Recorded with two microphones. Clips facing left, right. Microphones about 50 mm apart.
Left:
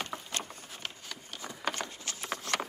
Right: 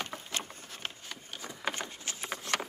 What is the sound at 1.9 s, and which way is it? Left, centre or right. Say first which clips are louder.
Patter: even; right.